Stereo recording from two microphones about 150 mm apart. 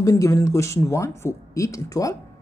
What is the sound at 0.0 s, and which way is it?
Speech, 20° left (ahead or behind).